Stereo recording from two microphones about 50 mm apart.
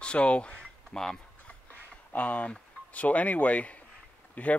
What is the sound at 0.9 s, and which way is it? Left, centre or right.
Speech, centre.